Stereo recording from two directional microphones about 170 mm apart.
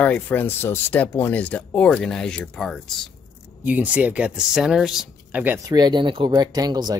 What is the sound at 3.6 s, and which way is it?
Speech, 10° right (ahead or behind).